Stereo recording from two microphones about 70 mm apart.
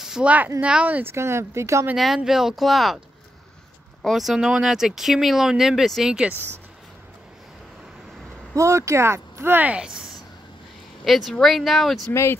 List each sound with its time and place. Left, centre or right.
0.2 s speech: right
1.1 s speech: right
2.0 s speech: centre
4.0 s speech: centre
8.5 s speech: right
9.7 s speech: centre
11.1 s speech: centre
12.1 s speech: left